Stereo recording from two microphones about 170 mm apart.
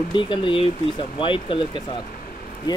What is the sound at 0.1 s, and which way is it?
Speech, 30° left (ahead or behind).